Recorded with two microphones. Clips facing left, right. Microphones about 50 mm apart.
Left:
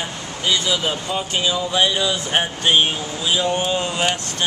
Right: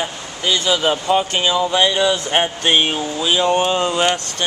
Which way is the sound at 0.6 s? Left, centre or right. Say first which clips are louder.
Right 5 dB; right.